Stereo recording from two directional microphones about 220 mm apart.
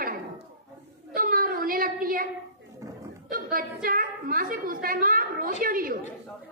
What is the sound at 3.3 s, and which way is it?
A woman's voice, 40° right (ahead or behind).